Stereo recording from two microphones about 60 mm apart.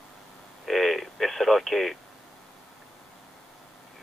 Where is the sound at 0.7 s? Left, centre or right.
Centre.